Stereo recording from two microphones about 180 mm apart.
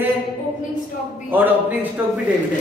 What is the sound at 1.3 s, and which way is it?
Speech, 10° right (ahead or behind).